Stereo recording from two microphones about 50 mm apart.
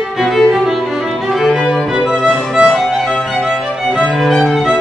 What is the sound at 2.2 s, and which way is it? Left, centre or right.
Music, centre.